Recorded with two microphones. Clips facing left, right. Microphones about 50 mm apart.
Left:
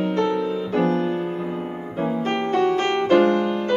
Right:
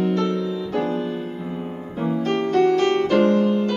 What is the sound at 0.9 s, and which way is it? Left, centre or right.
Music, left.